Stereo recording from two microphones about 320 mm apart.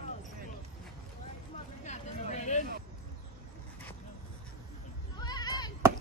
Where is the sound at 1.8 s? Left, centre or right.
Left.